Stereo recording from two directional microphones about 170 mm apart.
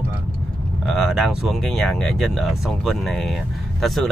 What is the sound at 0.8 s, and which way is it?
Speech, centre (ahead or behind).